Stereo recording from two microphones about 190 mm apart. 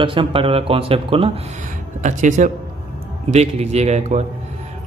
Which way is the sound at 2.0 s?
40° right (ahead or behind).